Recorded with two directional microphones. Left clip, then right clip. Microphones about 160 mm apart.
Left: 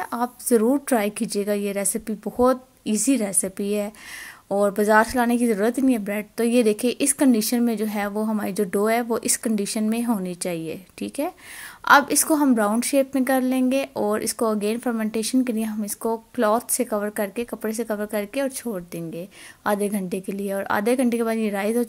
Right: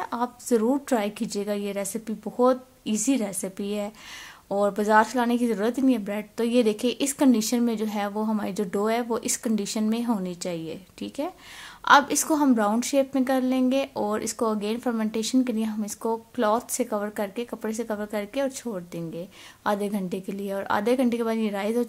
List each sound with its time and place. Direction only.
0.0 s a woman's voice: 25° left (ahead or behind)